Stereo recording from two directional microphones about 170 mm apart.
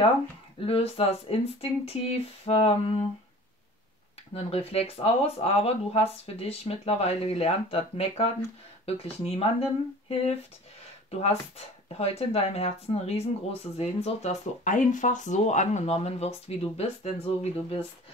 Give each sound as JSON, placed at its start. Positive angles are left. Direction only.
{"t": 0.6, "sound": "speech", "side_deg": 35}
{"t": 4.3, "sound": "speech", "side_deg": 35}